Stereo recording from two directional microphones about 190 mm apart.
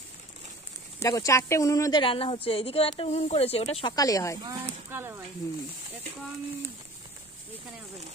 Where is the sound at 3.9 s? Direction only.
20° left (ahead or behind).